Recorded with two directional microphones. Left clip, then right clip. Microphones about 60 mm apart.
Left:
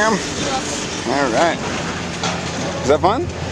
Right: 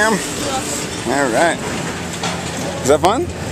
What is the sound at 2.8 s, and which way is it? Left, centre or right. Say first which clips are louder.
Speech: right 2 dB; right.